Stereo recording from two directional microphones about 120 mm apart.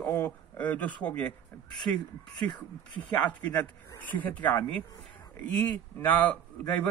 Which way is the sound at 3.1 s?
15° left (ahead or behind).